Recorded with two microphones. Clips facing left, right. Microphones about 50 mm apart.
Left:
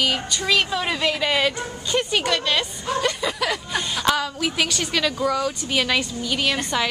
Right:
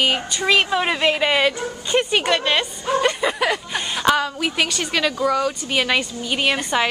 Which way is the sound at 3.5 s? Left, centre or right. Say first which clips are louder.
Right 1 dB; centre.